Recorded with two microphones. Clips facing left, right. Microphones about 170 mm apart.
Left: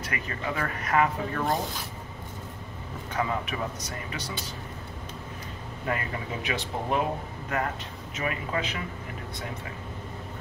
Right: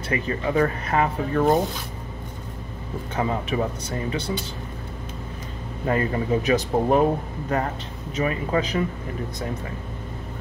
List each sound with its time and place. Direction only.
0.1 s speech: 30° right (ahead or behind)
3.2 s speech: 30° right (ahead or behind)
5.9 s speech: 35° right (ahead or behind)